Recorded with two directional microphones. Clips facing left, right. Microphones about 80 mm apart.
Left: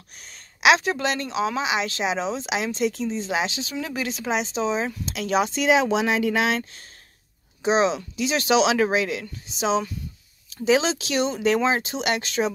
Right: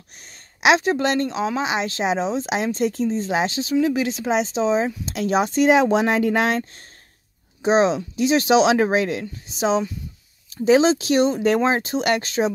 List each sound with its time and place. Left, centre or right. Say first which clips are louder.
0.6 s a woman's voice: right 2 dB; right
3.8 s a woman's voice: right 7 dB; centre; by 9.2 s right
10.5 s speech: right 5 dB; right